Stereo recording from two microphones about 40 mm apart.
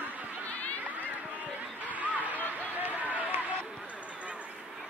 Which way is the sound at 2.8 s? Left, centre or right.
Right.